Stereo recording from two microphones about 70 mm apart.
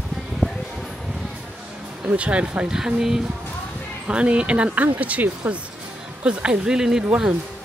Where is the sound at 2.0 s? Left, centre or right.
Centre.